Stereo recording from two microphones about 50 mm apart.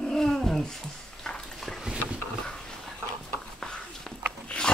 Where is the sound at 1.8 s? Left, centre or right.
Centre.